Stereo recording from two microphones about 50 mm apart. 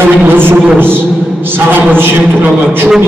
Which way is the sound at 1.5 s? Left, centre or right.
Right.